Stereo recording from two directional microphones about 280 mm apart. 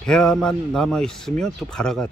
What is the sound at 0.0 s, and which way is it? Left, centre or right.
A man's voice, centre.